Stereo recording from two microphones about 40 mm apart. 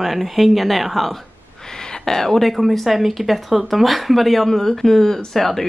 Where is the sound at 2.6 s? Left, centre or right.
Centre.